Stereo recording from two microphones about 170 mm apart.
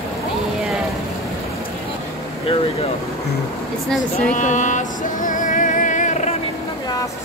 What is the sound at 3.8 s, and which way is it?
Speech, centre (ahead or behind).